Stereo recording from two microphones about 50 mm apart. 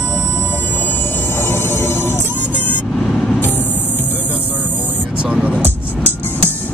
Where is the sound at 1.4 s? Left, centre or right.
Left.